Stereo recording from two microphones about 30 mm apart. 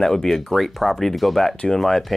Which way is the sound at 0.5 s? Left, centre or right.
Centre.